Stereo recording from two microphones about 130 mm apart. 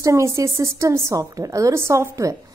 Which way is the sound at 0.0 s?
25° right (ahead or behind).